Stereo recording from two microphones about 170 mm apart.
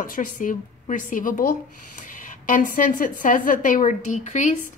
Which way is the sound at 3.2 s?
50° left (ahead or behind).